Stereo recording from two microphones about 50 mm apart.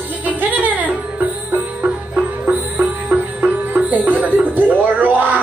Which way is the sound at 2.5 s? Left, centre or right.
Right.